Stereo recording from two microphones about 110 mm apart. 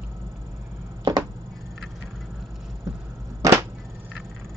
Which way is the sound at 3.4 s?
30° right (ahead or behind).